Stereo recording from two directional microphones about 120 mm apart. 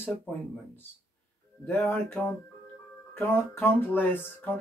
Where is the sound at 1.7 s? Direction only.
20° left (ahead or behind).